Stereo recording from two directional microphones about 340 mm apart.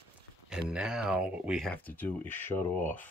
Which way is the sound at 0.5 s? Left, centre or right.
Centre.